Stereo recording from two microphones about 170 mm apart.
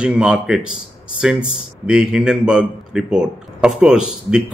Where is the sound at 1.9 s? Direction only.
5° right (ahead or behind).